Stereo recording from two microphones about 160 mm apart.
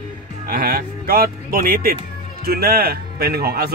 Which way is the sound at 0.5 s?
70° right (ahead or behind).